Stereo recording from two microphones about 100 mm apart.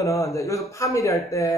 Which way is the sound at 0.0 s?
30° left (ahead or behind).